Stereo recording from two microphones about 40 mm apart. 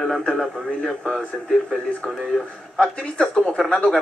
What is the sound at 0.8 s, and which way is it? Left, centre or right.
Speech, left.